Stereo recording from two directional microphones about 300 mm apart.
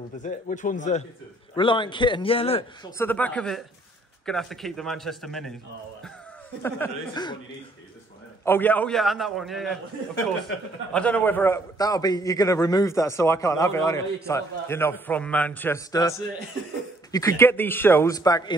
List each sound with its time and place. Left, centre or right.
0.2 s a man's voice: left
3.0 s a man's voice: centre
6.6 s a man's voice: centre
8.5 s a man's voice: centre